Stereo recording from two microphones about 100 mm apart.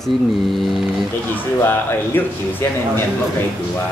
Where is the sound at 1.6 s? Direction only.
20° left (ahead or behind).